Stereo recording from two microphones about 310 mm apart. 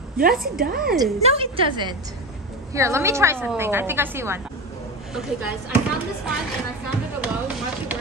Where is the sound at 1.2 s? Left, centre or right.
Centre.